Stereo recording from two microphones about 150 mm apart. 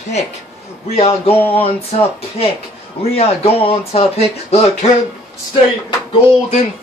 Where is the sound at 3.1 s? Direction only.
40° left (ahead or behind).